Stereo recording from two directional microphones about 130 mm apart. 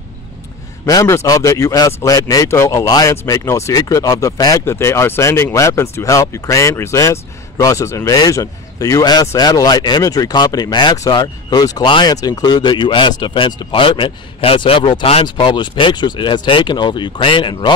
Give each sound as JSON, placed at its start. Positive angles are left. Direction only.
{"t": 0.8, "sound": "speech", "side_deg": 25}